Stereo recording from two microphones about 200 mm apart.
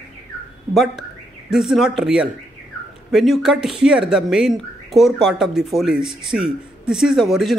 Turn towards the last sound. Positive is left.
turn(degrees=0)  # may be behind; listen again after turning